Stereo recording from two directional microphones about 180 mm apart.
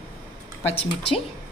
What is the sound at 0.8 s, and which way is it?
Speech, 30° left (ahead or behind).